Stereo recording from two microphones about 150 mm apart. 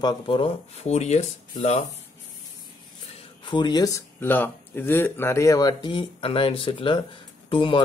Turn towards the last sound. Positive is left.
turn(degrees=35)  # may be behind; listen again after turning